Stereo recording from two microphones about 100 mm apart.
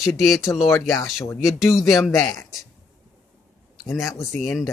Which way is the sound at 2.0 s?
30° left (ahead or behind).